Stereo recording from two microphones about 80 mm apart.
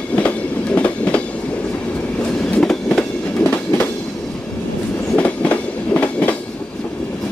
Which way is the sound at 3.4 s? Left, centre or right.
Left.